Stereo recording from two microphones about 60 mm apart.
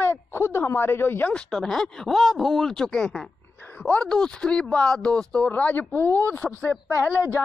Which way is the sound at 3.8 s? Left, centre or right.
Left.